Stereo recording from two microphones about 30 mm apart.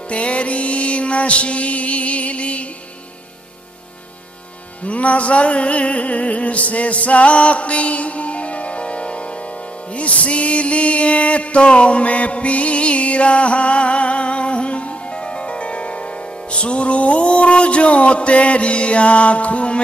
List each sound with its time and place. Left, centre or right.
0.1 s music: left
4.8 s music: left